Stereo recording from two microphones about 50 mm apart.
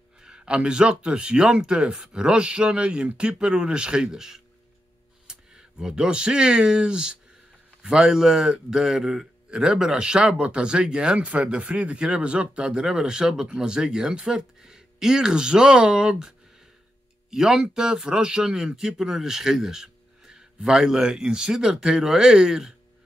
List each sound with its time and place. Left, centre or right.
0.2 s a man's voice: centre